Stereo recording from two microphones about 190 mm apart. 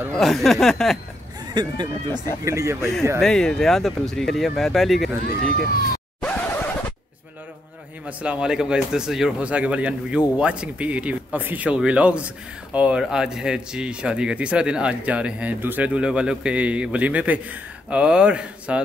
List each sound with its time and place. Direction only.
0.1 s speech: centre (ahead or behind)
1.5 s speech: 25° right (ahead or behind)
3.2 s speech: 5° left (ahead or behind)
6.2 s scratch: 10° left (ahead or behind)
8.2 s speech: 5° right (ahead or behind)